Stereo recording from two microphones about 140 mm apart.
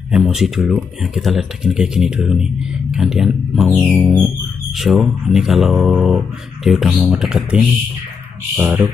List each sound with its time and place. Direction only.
0.1 s speech: centre (ahead or behind)
8.5 s speech: 15° right (ahead or behind)